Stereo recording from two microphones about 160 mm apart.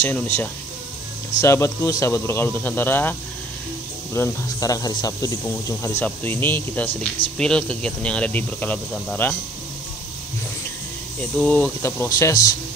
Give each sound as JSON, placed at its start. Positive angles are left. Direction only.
{"t": 0.0, "sound": "speech", "side_deg": 10}
{"t": 11.1, "sound": "speech", "side_deg": 5}